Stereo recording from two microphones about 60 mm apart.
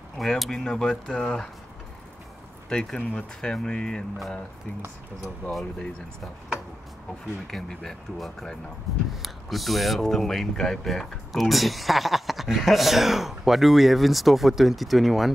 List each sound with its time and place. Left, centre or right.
0.2 s speech: centre
2.7 s speech: centre
7.4 s speech: centre